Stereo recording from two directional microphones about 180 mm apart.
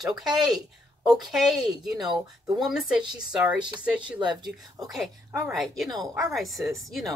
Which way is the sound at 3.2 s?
5° right (ahead or behind).